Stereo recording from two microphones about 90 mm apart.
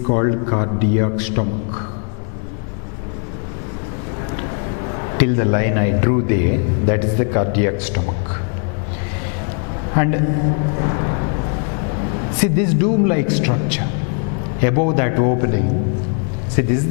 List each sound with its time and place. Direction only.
0.1 s a man's voice: 15° left (ahead or behind)
5.1 s a man's voice: 15° left (ahead or behind)
9.9 s a man's voice: 15° left (ahead or behind)
12.4 s a man's voice: 15° left (ahead or behind)